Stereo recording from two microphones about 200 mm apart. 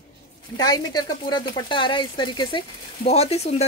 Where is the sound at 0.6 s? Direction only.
20° left (ahead or behind).